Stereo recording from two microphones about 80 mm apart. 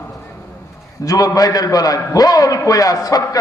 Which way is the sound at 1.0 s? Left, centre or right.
Left.